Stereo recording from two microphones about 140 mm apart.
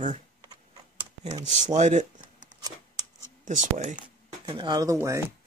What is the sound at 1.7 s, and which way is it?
Speech, 55° right (ahead or behind).